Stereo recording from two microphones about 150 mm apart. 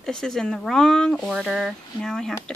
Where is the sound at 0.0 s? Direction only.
5° left (ahead or behind).